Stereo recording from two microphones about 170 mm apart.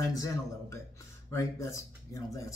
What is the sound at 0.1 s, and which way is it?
Speech, 20° left (ahead or behind).